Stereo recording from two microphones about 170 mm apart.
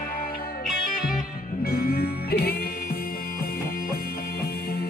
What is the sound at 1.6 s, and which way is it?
Music, 65° left (ahead or behind).